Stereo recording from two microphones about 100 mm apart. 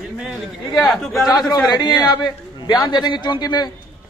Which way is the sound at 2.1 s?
45° left (ahead or behind).